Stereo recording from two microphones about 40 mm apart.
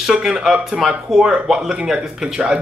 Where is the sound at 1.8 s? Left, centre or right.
Centre.